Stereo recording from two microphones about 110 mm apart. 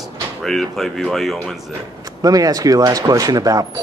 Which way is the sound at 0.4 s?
5° left (ahead or behind).